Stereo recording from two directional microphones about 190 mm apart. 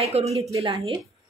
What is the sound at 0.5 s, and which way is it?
Speech, 20° right (ahead or behind).